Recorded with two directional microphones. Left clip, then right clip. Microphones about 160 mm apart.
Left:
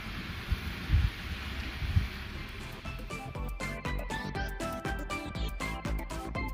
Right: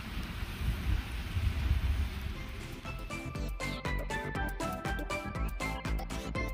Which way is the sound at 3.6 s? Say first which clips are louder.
Even; centre (ahead or behind).